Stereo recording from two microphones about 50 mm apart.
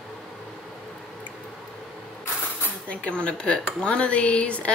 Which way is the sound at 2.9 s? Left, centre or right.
Left.